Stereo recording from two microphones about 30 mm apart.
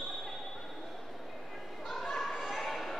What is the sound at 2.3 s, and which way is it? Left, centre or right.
Basketball bounce, centre.